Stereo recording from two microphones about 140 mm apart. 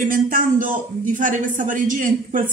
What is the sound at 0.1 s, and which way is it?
A man's voice, 80° right.